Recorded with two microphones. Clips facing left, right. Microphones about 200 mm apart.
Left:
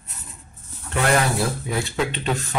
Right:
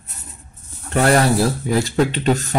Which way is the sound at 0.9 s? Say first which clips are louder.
Right 5 dB; 35° right (ahead or behind).